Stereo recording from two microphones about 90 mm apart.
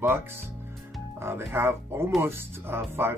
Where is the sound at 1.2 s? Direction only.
25° right (ahead or behind).